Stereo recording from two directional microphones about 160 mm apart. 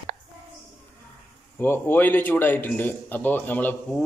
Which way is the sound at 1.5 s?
15° left (ahead or behind).